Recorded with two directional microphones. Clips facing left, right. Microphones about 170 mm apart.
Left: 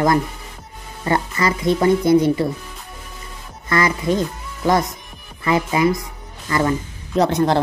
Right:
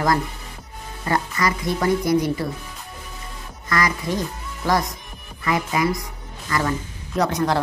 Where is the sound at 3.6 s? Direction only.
25° left (ahead or behind).